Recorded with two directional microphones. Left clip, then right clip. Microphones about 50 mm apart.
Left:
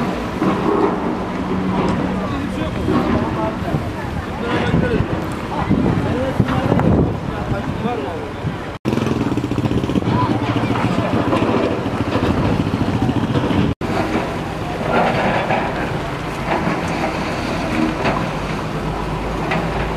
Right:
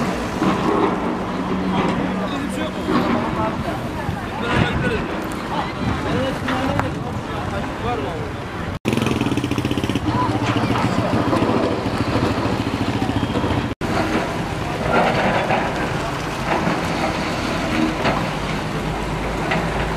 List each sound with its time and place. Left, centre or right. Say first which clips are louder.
0.4 s thunder: left 2 dB; right
4.5 s a sound: left 1 dB; right
14.9 s train: left 1 dB; centre
16.4 s vehicle: left 1 dB; centre